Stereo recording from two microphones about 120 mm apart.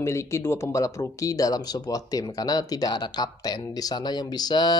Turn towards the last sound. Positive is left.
turn(degrees=35)  # may be behind; listen again after turning